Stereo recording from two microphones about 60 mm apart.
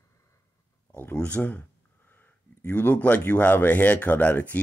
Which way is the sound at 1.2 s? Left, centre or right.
Left.